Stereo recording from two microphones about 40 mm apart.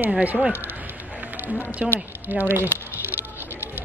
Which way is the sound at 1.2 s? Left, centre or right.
Right.